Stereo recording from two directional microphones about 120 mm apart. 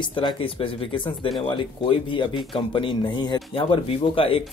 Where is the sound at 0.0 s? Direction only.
40° left (ahead or behind).